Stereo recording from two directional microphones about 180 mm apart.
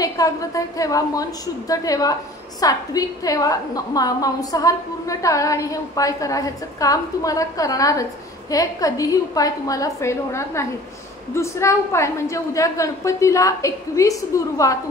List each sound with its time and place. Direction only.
0.0 s a woman's voice: 20° left (ahead or behind)